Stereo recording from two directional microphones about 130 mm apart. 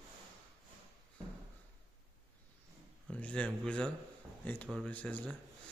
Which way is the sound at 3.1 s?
10° left (ahead or behind).